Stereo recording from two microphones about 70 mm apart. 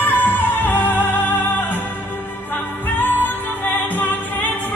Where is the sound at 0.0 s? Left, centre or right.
Left.